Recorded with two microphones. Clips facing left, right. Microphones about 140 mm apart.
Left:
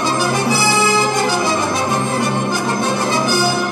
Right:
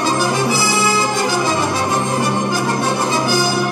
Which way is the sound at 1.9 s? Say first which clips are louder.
Even; 15° right (ahead or behind).